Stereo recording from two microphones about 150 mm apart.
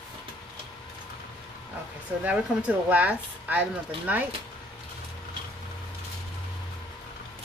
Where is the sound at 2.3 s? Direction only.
10° right (ahead or behind).